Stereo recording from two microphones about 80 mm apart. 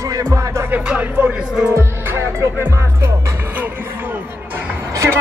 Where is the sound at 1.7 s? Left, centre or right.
Right.